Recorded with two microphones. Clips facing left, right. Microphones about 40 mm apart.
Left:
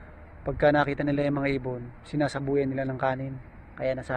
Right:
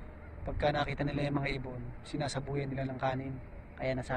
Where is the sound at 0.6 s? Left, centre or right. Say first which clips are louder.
Left 9 dB; left.